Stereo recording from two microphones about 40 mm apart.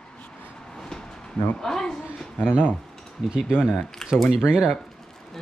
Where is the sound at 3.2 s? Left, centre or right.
Centre.